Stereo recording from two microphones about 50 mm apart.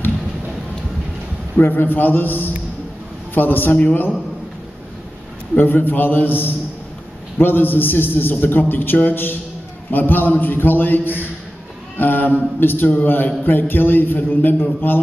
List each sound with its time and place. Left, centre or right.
1.6 s a man's voice: left
5.6 s a man's voice: left
12.0 s a sound: left
12.5 s a man's voice: left